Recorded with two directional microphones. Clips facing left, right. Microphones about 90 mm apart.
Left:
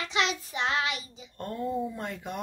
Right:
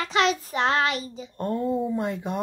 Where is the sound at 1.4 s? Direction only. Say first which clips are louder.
Right 6 dB; 25° right (ahead or behind).